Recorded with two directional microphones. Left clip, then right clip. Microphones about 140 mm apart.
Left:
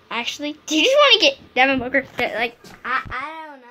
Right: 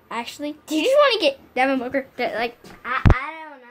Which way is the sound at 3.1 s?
75° left (ahead or behind).